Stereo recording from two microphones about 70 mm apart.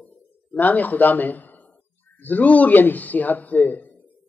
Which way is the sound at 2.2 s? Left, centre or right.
Left.